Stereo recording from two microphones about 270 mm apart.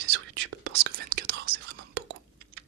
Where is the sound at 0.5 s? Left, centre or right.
Right.